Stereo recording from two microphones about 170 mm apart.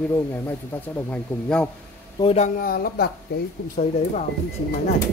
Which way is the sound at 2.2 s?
35° left (ahead or behind).